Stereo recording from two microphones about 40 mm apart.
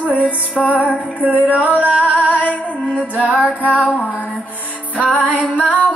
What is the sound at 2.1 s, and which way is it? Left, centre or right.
Music, left.